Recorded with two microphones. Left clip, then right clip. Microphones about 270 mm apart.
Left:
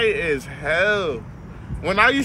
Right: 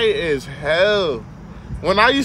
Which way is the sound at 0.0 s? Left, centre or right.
Right.